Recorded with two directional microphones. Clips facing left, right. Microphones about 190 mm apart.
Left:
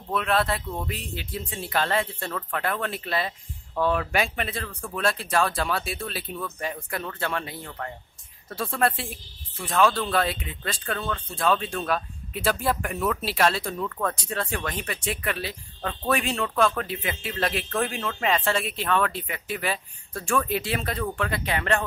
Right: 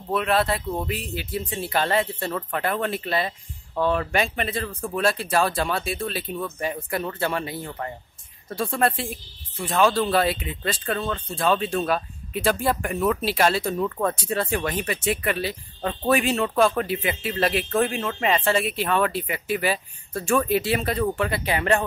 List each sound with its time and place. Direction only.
0.1 s speech: 5° right (ahead or behind)
13.7 s speech: 20° right (ahead or behind)
14.2 s speech: 5° right (ahead or behind)